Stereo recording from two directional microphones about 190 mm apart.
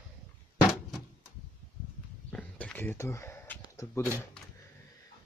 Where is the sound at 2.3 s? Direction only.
5° left (ahead or behind).